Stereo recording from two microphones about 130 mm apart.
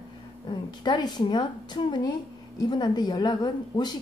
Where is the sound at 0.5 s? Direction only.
35° left (ahead or behind).